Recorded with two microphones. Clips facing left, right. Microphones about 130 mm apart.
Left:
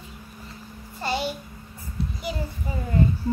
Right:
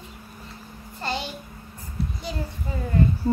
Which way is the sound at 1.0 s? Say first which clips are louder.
Left 3 dB; 5° left (ahead or behind).